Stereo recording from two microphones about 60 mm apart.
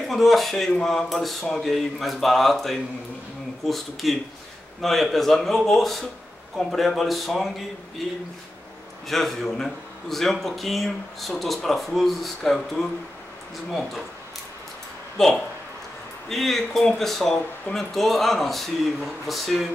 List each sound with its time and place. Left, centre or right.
0.1 s speech: centre
9.0 s a man's voice: centre
15.2 s speech: centre